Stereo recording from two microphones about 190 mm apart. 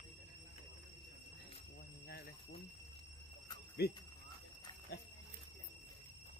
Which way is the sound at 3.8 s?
55° left (ahead or behind).